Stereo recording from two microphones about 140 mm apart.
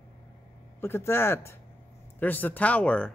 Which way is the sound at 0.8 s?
15° left (ahead or behind).